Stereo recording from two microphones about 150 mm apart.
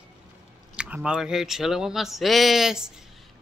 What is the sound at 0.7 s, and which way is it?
Speech, 10° right (ahead or behind).